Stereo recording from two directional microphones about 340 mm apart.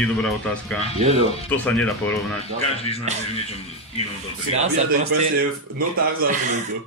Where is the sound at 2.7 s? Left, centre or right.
Centre.